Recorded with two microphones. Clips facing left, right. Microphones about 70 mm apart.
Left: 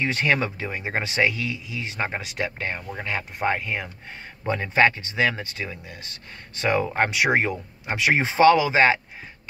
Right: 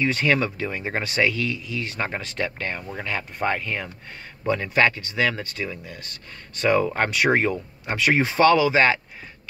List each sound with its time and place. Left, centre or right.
0.0 s speech: left
4.5 s speech: left